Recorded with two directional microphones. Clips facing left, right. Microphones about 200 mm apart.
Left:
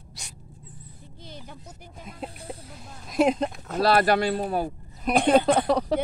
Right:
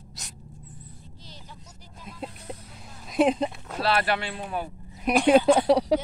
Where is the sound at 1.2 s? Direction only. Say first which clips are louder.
Left 8 dB; 55° left (ahead or behind).